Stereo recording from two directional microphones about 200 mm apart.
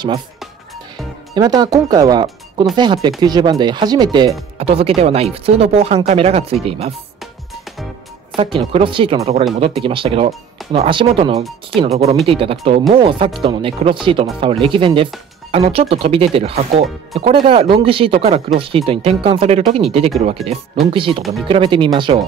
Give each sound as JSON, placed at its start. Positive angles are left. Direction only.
{"t": 1.3, "sound": "speech", "side_deg": -20}
{"t": 8.4, "sound": "speech", "side_deg": -25}
{"t": 20.4, "sound": "speech", "side_deg": 0}
{"t": 20.8, "sound": "speech", "side_deg": -25}